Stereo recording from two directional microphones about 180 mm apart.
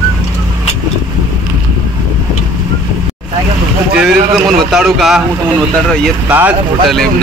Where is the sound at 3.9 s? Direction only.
Centre (ahead or behind).